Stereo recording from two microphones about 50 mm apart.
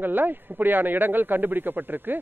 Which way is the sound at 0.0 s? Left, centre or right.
Right.